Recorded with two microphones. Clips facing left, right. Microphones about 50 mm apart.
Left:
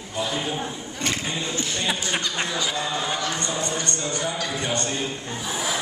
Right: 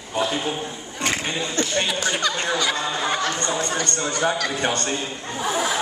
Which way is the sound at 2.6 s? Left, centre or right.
Right.